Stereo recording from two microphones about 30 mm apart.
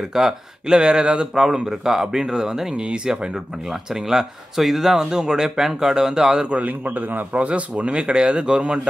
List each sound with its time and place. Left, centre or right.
0.1 s speech: centre
0.7 s speech: right
1.3 s speech: right
2.7 s speech: right
3.3 s speech: centre
5.1 s speech: right
6.6 s a man's voice: right
7.3 s speech: right